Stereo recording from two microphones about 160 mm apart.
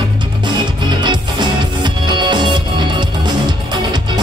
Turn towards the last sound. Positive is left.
turn(degrees=-30)  # may be behind; listen again after turning